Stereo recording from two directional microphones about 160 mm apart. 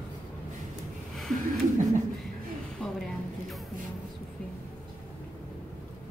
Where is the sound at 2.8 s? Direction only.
5° left (ahead or behind).